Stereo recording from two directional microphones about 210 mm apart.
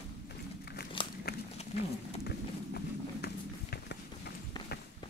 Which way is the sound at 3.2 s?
50° left (ahead or behind).